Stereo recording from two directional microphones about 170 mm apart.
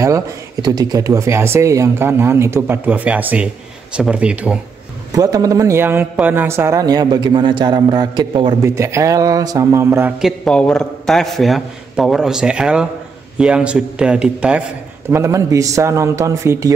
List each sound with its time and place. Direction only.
0.0 s speech: 20° right (ahead or behind)
5.1 s a man's voice: 20° right (ahead or behind)
10.1 s a man's voice: centre (ahead or behind)
15.0 s speech: 15° right (ahead or behind)